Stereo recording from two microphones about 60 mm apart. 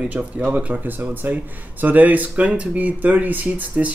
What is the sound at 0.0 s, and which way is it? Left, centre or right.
Speech, right.